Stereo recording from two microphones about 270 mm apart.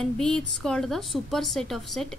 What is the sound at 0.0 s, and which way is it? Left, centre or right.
A woman's voice, centre.